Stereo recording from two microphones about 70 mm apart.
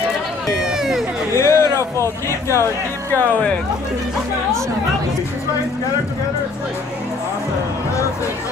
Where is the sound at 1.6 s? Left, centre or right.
Right.